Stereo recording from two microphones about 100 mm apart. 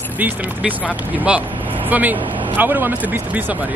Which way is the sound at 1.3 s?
10° right (ahead or behind).